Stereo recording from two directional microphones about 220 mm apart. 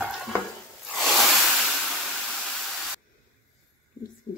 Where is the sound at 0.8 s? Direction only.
Centre (ahead or behind).